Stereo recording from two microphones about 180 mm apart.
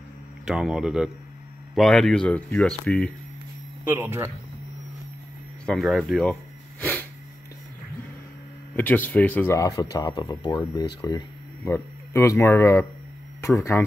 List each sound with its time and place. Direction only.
0.5 s speech: 5° right (ahead or behind)
3.8 s speech: 10° right (ahead or behind)
5.7 s speech: centre (ahead or behind)
6.8 s sneeze: 10° left (ahead or behind)
8.7 s speech: 10° left (ahead or behind)